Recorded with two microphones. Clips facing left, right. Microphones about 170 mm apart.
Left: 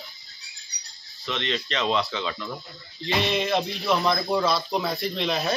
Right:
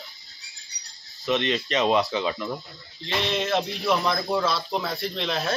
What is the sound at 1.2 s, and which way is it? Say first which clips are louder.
Speech: right 5 dB; 20° right (ahead or behind).